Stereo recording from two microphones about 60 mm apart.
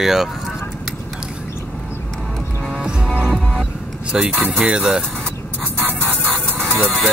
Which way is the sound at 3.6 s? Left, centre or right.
Centre.